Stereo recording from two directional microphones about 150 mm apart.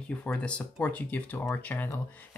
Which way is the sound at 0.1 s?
10° left (ahead or behind).